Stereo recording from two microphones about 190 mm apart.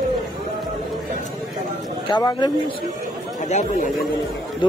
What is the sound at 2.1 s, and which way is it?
Speech, 20° left (ahead or behind).